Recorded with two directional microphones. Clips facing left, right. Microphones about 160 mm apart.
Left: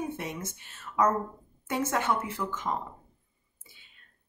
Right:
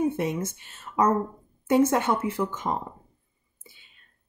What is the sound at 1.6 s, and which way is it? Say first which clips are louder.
Speech: right 8 dB; 20° right (ahead or behind).